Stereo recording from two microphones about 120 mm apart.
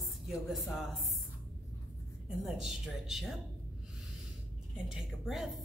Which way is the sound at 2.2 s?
5° right (ahead or behind).